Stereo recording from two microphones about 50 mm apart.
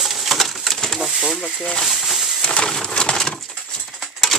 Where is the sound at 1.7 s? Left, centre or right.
Centre.